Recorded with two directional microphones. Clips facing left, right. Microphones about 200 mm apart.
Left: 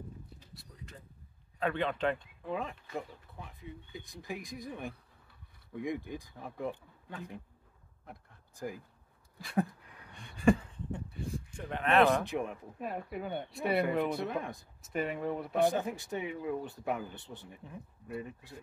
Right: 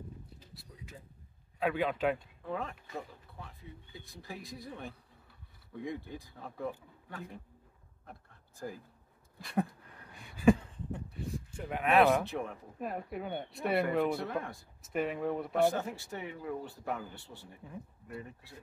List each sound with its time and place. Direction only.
0.6 s a sound: 5° right (ahead or behind)
1.6 s speech: 5° right (ahead or behind)
2.4 s speech: 15° left (ahead or behind)
8.1 s a sound: 15° left (ahead or behind)
9.4 s speech: centre (ahead or behind)
10.1 s sheep: 5° right (ahead or behind)
12.3 s speech: 15° left (ahead or behind)
12.8 s speech: centre (ahead or behind)
14.0 s speech: 20° left (ahead or behind)
14.8 s speech: centre (ahead or behind)
15.5 s speech: 15° left (ahead or behind)